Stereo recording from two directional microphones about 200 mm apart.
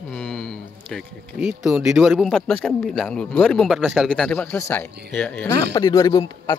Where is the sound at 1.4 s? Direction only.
5° right (ahead or behind).